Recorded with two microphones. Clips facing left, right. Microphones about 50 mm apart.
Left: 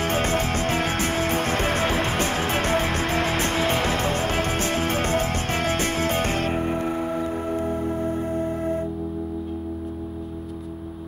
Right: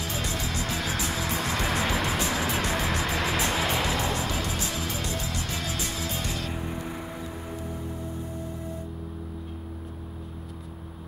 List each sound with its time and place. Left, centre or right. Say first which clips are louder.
0.0 s music: left 9 dB; left